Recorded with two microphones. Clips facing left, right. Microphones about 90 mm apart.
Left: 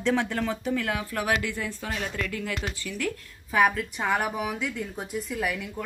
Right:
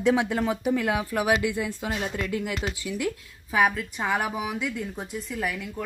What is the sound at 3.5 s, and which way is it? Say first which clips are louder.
A woman's voice: even; 5° right (ahead or behind).